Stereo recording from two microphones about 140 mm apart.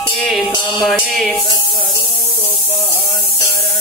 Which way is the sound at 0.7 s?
5° right (ahead or behind).